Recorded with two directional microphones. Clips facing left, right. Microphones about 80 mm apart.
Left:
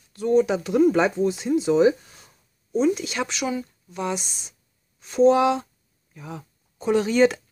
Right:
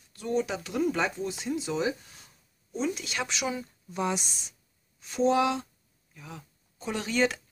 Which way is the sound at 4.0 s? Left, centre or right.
Centre.